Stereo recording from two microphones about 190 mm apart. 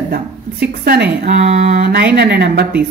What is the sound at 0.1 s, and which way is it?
Speech, 55° right (ahead or behind).